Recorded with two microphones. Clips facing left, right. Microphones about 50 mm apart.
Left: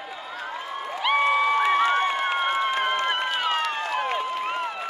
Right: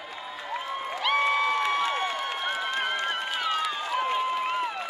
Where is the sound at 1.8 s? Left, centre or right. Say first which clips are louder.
Left 6 dB; left.